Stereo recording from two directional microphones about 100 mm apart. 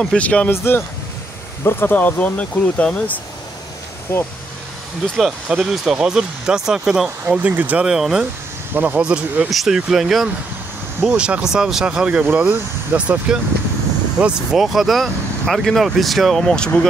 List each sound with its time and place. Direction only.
0.2 s speech: 15° left (ahead or behind)
5.1 s speech: 5° right (ahead or behind)
8.7 s speech: 15° right (ahead or behind); by 16.8 s 10° left (ahead or behind)